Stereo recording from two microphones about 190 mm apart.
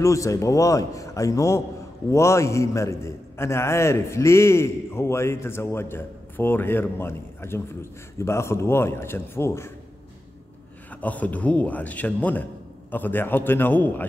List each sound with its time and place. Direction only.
0.0 s a man's voice: 15° left (ahead or behind)
10.9 s a man's voice: 10° left (ahead or behind)